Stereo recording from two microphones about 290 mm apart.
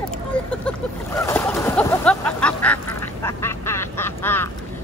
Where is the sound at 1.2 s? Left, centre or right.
Centre.